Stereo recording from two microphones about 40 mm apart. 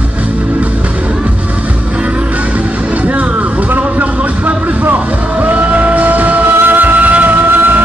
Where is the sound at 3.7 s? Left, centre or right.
Right.